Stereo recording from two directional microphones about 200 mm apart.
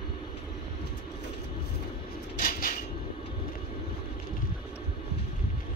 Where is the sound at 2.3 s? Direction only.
45° left (ahead or behind).